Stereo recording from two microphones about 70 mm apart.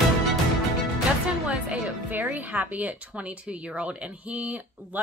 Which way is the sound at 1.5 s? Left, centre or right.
Right.